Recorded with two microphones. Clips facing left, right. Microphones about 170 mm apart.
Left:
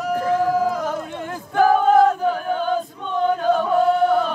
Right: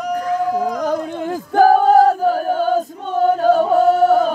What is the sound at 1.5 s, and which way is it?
Choir, 35° right (ahead or behind).